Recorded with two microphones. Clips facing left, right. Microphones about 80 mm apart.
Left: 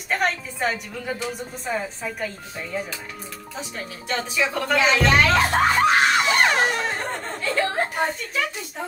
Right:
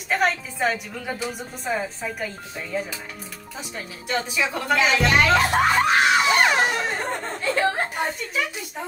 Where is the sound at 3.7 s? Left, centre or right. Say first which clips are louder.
Right 2 dB; centre.